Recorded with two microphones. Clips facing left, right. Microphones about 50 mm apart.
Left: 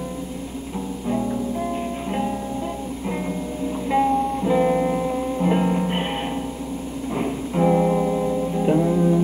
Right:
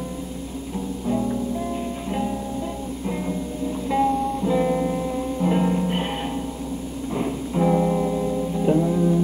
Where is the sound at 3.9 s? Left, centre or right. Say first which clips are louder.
Left 2 dB; centre.